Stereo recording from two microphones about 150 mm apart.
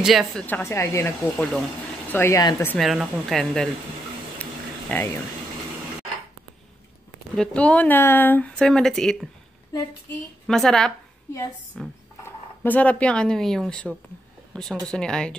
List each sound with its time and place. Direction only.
0.0 s speech: centre (ahead or behind)
0.5 s speech: 15° left (ahead or behind)
1.3 s speech: centre (ahead or behind)
2.1 s speech: 20° left (ahead or behind)
2.8 s speech: centre (ahead or behind)
4.4 s a sound: 10° left (ahead or behind)
7.3 s speech: 10° left (ahead or behind)
10.4 s a woman's voice: 5° left (ahead or behind)